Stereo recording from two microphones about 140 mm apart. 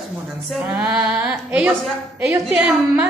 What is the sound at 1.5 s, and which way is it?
Speech, 5° right (ahead or behind).